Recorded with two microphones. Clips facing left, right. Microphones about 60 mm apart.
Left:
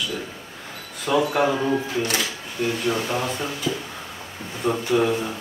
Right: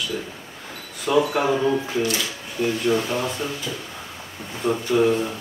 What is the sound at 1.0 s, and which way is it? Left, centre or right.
Speech, centre.